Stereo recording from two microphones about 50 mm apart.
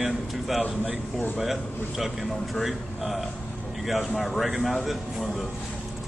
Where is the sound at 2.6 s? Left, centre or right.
Centre.